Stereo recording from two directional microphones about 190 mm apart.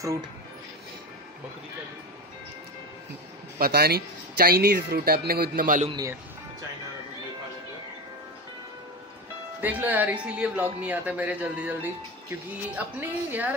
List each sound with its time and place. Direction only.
3.5 s speech: 55° right (ahead or behind)
5.9 s speech: 20° right (ahead or behind)
9.6 s speech: 10° right (ahead or behind)